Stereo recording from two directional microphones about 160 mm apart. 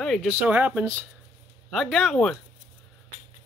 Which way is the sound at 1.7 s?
Centre (ahead or behind).